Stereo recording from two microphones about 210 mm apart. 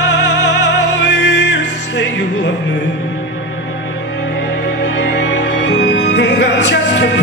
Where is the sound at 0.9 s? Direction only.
55° left (ahead or behind).